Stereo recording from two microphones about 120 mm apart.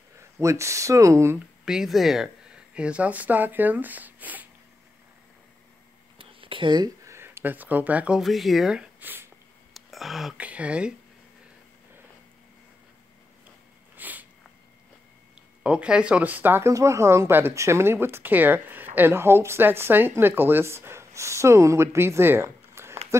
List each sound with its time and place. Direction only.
0.2 s speech: 25° right (ahead or behind)
1.7 s speech: 5° right (ahead or behind)
6.1 s whispering: 45° right (ahead or behind)
7.1 s speech: 20° right (ahead or behind)
9.8 s speech: centre (ahead or behind)
13.9 s sniff: 15° right (ahead or behind)
15.6 s speech: 10° right (ahead or behind)